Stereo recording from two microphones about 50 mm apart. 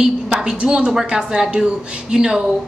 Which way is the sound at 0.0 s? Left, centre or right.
Centre.